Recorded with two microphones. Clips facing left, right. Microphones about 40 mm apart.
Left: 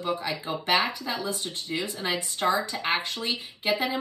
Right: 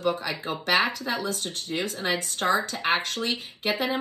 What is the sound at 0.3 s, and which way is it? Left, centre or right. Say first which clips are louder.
A woman's voice: right 1 dB; right.